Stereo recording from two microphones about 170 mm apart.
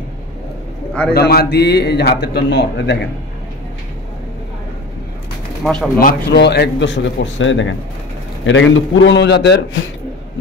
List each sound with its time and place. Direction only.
1.1 s speech: 70° left (ahead or behind); by 3.1 s 85° left
5.6 s speech: 5° left (ahead or behind)
5.9 s a man's voice: 65° left (ahead or behind); by 9.6 s 85° left